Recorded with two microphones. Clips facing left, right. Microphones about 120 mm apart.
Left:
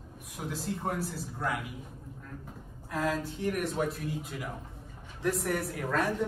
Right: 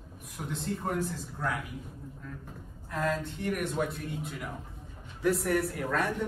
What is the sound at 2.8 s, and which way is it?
A man's voice, 5° left (ahead or behind).